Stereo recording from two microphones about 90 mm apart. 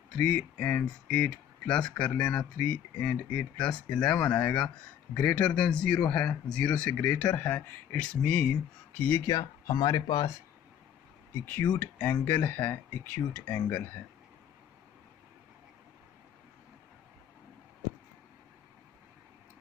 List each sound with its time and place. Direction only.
0.1 s speech: 10° left (ahead or behind)
9.2 s speech: 45° left (ahead or behind)
11.8 s speech: 20° left (ahead or behind)